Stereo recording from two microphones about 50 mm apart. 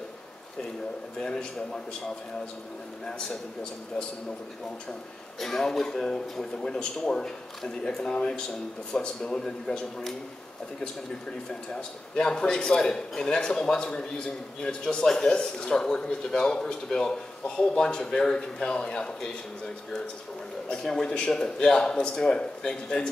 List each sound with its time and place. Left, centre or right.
1.2 s speech: centre
5.4 s speech: centre
11.7 s speech: centre
20.6 s speech: centre